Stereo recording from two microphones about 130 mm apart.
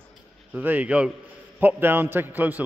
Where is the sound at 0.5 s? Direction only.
10° right (ahead or behind).